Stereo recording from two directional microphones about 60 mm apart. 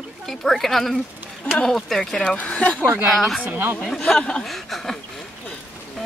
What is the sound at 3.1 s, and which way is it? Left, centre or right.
Speech, centre.